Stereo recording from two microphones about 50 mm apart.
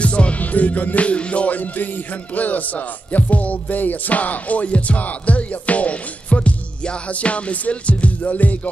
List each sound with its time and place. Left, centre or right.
0.0 s music: left